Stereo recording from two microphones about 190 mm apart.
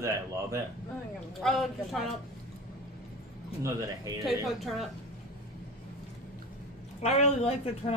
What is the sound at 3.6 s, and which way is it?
Speech, 15° right (ahead or behind).